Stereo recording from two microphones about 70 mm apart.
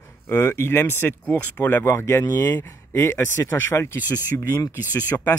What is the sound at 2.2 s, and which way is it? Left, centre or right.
Speech, left.